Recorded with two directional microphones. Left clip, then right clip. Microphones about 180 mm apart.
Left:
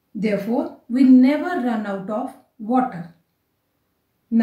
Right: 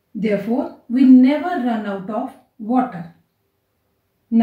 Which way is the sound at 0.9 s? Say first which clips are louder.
Right 2 dB; 20° left (ahead or behind).